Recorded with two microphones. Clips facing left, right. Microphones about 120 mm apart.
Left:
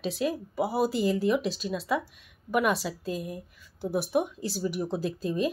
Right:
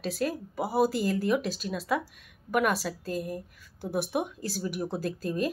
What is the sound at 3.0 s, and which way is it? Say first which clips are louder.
Speech: right 1 dB; 45° right (ahead or behind).